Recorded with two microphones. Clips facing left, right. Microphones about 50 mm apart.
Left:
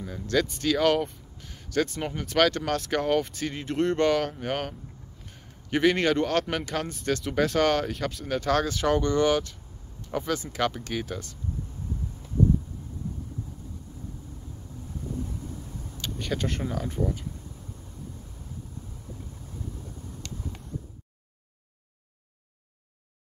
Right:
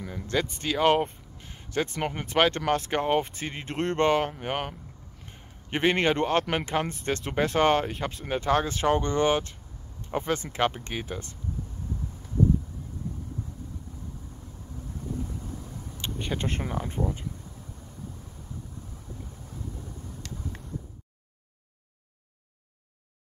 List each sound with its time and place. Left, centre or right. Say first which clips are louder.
0.1 s speech: left 3 dB; right
5.2 s a sound: even; right
6.5 s speech: right 2 dB; right
16.0 s speech: left 1 dB; right